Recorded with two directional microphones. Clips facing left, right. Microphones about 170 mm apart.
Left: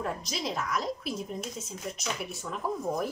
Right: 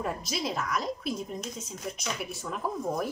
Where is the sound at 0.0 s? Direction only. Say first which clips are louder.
Right 1 dB; centre (ahead or behind).